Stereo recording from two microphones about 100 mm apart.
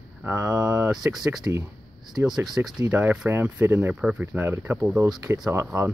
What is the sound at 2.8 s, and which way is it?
Speech, 15° right (ahead or behind).